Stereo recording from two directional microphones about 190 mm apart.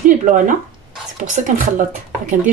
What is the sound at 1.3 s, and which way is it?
Speech, 40° right (ahead or behind).